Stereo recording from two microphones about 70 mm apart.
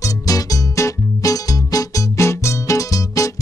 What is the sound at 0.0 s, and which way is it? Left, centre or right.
Music, left.